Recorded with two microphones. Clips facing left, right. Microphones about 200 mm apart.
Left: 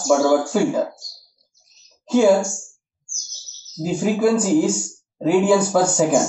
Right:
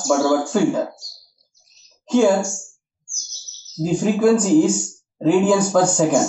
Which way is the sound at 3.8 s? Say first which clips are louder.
Right 1 dB; 5° left (ahead or behind).